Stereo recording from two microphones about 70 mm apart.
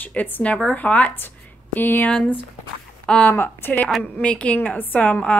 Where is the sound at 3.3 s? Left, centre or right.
Left.